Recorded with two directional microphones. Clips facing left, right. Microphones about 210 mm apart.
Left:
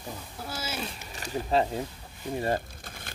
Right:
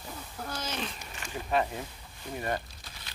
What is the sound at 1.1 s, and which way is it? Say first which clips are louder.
Speech: left 4 dB; 35° left (ahead or behind).